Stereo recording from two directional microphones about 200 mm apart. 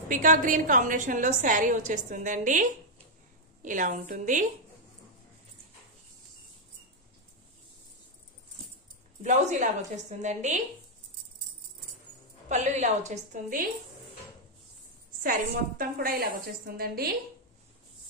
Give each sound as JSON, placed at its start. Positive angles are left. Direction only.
{"t": 0.1, "sound": "a woman's voice", "side_deg": -40}
{"t": 9.2, "sound": "a woman's voice", "side_deg": -35}
{"t": 12.4, "sound": "a woman's voice", "side_deg": -35}
{"t": 15.2, "sound": "a woman's voice", "side_deg": -45}